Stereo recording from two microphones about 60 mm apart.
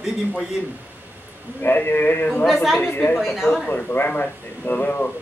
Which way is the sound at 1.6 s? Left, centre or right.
Left.